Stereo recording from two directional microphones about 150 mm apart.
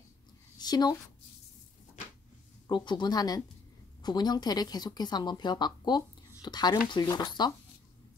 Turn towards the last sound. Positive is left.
turn(degrees=25)  # may be behind; listen again after turning